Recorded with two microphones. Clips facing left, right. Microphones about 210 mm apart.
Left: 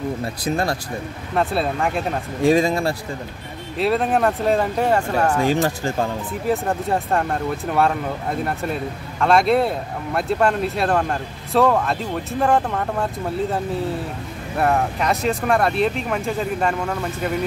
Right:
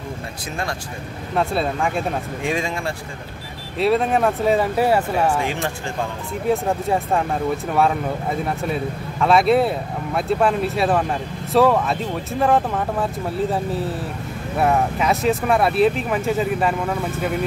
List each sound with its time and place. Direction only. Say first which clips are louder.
1.3 s speech: even; centre (ahead or behind)
2.4 s speech: left 9 dB; 35° left (ahead or behind)
3.7 s speech: right 1 dB; centre (ahead or behind)
6.5 s speech: right 1 dB; centre (ahead or behind)
14.6 s speech: right 1 dB; centre (ahead or behind)